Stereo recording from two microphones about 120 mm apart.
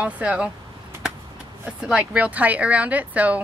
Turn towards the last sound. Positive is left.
turn(degrees=-10)  # may be behind; listen again after turning